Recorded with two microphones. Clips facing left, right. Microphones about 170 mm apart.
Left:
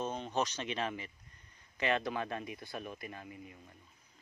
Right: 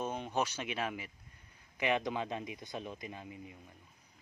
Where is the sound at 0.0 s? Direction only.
10° right (ahead or behind).